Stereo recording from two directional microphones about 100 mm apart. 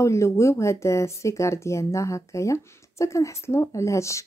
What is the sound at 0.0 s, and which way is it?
Speech, 30° left (ahead or behind).